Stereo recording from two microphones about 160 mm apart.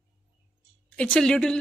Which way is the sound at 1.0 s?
5° left (ahead or behind).